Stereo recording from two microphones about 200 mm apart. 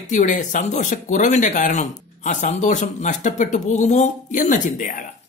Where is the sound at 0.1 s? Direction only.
40° left (ahead or behind).